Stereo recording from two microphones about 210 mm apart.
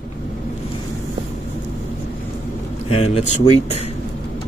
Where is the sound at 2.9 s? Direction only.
30° left (ahead or behind).